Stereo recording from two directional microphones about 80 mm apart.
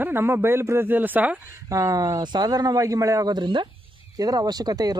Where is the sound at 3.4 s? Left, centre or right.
Right.